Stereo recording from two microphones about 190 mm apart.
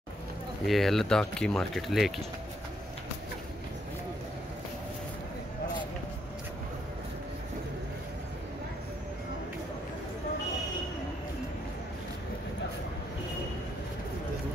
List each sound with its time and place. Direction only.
0.7 s speech: centre (ahead or behind)